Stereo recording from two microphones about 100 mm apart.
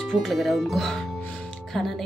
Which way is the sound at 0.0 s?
5° left (ahead or behind).